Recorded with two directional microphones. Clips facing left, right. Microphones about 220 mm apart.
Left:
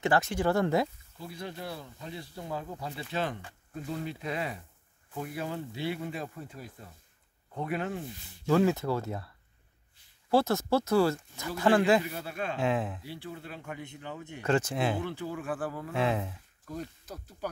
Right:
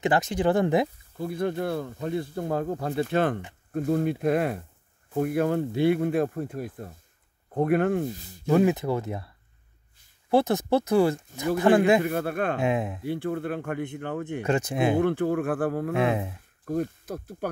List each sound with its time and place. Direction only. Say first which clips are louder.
0.0 s speech: right 4 dB; 20° right (ahead or behind)
1.1 s speech: right 12 dB; 55° right (ahead or behind)
8.5 s speech: right 4 dB; 15° right (ahead or behind)
10.3 s speech: right 4 dB; 20° right (ahead or behind)
12.0 s speech: right 10 dB; 55° right (ahead or behind)
12.5 s speech: right 4 dB; 15° right (ahead or behind)
13.0 s speech: right 13 dB; 55° right (ahead or behind)
14.4 s speech: right 3 dB; 15° right (ahead or behind)
15.0 s speech: right 12 dB; 55° right (ahead or behind)
16.0 s speech: right 2 dB; 15° right (ahead or behind)
16.6 s speech: right 11 dB; 55° right (ahead or behind)